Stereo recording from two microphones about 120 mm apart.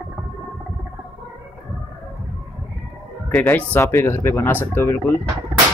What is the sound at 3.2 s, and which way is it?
Speech, 10° left (ahead or behind).